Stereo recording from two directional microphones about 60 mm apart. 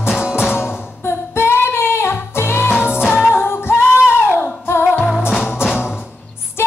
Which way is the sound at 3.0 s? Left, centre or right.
Centre.